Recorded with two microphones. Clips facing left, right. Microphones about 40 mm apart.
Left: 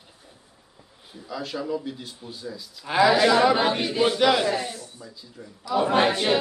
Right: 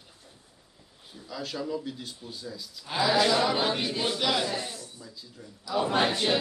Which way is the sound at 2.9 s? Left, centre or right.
Left.